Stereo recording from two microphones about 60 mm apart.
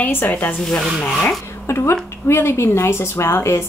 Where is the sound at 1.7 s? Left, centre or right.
Left.